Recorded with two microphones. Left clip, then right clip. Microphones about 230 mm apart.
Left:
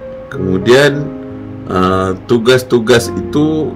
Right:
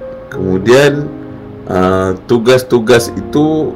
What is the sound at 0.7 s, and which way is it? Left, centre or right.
Speech, centre.